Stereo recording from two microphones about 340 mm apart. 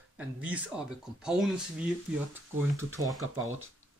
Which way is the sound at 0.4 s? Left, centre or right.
Centre.